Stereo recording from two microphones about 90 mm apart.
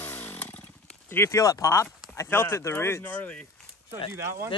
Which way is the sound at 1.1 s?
25° left (ahead or behind).